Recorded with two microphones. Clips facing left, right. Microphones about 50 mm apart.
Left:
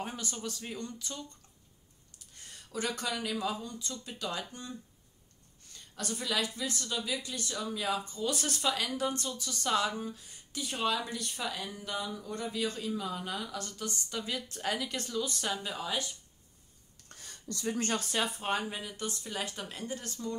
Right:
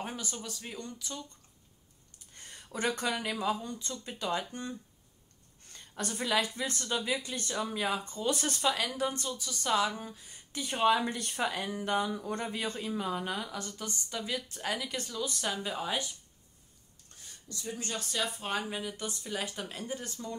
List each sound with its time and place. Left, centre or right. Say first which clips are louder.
0.0 s speech: left 1 dB; centre
2.8 s speech: right 3 dB; right
5.7 s speech: right 1 dB; right
8.4 s speech: right 2 dB; centre
11.0 s speech: right 5 dB; right
13.4 s speech: even; centre
15.7 s speech: right 1 dB; centre
17.1 s a sound: left 5 dB; left
17.9 s speech: left 2 dB; left
18.4 s speech: left 1 dB; centre